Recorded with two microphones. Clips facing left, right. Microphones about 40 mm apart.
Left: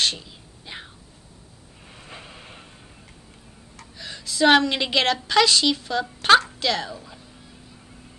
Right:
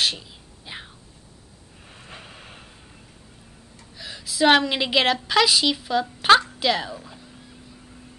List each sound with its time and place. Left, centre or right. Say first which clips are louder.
0.0 s whispering: even; centre
1.9 s vehicle: left 1 dB; centre
4.0 s a woman's voice: even; centre